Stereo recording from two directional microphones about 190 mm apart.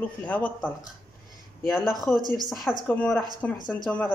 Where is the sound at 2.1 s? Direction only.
20° right (ahead or behind).